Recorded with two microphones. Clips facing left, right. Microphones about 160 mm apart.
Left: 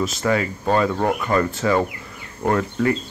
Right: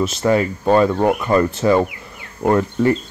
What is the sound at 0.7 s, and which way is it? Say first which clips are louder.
Speech: right 5 dB; 15° right (ahead or behind).